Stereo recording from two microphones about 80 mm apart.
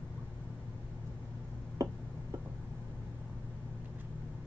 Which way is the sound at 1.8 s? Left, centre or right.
Right.